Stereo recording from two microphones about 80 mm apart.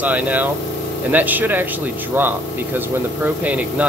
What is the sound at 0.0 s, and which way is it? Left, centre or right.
Speech, centre.